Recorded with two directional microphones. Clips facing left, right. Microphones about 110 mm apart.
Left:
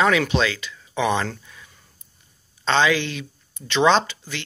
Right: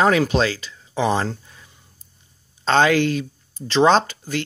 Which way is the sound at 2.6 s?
45° right (ahead or behind).